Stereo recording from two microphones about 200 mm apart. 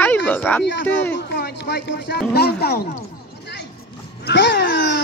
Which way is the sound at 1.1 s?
60° left (ahead or behind).